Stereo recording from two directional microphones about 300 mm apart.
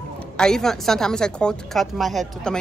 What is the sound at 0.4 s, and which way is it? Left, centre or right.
A woman's voice, centre.